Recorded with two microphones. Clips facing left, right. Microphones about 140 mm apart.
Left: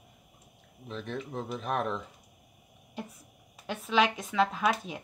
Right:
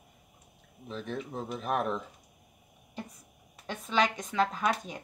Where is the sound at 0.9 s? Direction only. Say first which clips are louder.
Even; centre (ahead or behind).